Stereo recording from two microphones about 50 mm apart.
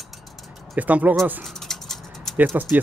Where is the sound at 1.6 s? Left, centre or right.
Centre.